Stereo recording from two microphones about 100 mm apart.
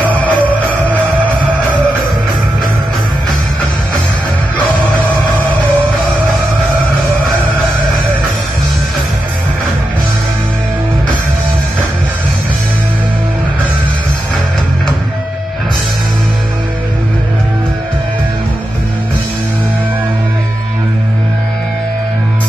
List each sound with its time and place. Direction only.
0.1 s music: 15° right (ahead or behind)